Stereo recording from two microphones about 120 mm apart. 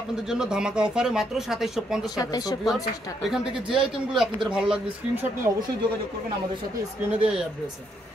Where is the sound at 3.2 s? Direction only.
5° right (ahead or behind).